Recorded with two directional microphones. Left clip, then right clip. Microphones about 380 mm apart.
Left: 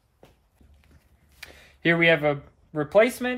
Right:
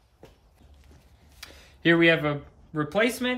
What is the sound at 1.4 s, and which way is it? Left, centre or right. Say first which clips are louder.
Speech: even; left.